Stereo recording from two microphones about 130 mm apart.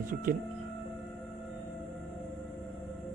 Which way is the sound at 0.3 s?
90° right.